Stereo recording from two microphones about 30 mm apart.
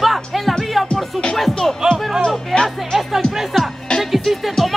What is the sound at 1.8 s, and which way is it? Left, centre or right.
Speech, right.